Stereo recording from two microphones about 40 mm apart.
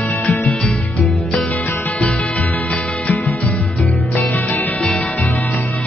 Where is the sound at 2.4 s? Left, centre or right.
Left.